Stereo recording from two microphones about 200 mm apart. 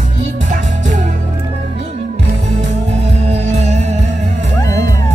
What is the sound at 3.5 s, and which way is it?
Music, 35° right (ahead or behind).